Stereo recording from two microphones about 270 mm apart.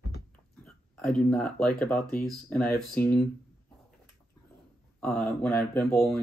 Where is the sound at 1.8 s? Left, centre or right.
Centre.